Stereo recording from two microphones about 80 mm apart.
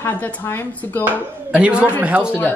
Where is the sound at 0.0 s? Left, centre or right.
Left.